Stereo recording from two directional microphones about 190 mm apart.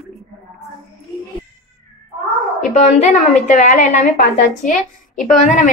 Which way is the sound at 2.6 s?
35° left (ahead or behind).